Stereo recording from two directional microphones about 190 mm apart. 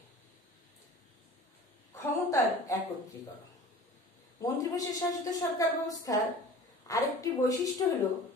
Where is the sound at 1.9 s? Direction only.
15° left (ahead or behind).